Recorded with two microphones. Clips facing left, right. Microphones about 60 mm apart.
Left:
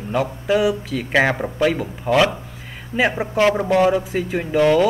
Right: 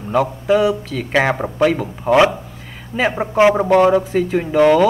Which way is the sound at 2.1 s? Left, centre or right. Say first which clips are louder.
Right 4 dB; right.